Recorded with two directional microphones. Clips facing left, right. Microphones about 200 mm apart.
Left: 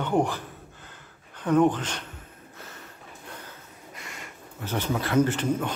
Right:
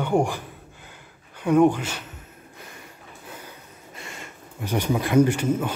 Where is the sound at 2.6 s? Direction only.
15° right (ahead or behind).